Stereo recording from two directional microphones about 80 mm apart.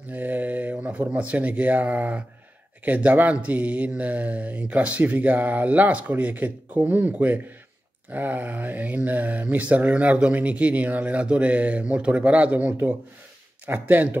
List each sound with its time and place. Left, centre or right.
0.1 s mantra: right